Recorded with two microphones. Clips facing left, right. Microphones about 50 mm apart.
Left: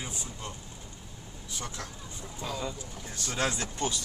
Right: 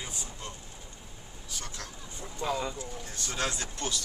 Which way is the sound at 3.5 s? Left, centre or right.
Centre.